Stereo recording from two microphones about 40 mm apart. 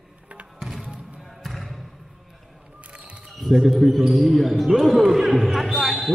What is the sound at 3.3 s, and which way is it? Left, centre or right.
Speech, centre.